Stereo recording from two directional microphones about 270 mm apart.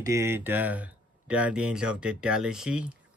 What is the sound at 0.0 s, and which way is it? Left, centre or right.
Speech, centre.